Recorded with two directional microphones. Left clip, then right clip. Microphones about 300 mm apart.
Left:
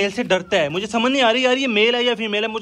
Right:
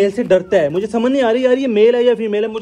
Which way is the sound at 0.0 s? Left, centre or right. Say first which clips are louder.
Right 6 dB; centre.